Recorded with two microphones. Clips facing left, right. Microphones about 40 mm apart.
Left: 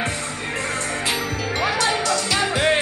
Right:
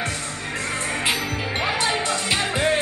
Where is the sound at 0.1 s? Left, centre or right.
Centre.